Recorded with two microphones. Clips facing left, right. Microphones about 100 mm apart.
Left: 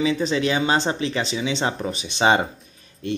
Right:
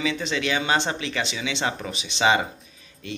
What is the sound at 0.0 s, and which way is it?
Speech, 40° left (ahead or behind).